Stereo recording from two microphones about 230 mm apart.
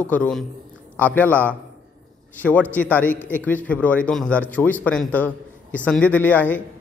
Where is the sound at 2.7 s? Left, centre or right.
Centre.